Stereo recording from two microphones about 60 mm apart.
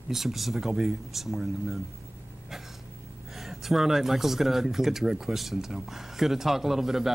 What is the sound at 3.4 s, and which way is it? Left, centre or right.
Speech, centre.